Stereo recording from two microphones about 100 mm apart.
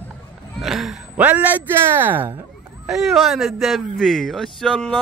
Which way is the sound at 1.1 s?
15° right (ahead or behind).